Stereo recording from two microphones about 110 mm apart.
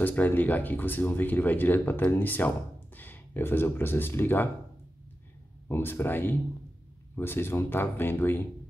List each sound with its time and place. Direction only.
0.0 s speech: 15° left (ahead or behind)
5.7 s speech: 20° left (ahead or behind)